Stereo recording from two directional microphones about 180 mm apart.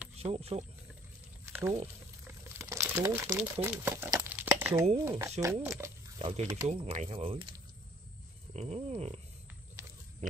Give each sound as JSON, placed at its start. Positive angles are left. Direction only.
{"t": 0.1, "sound": "speech", "side_deg": -35}
{"t": 1.4, "sound": "a sound", "side_deg": -15}
{"t": 2.2, "sound": "liquid", "side_deg": -15}
{"t": 3.6, "sound": "crumpling", "side_deg": -10}
{"t": 5.4, "sound": "speech", "side_deg": -15}
{"t": 6.1, "sound": "speech", "side_deg": -30}
{"t": 8.5, "sound": "speech", "side_deg": -35}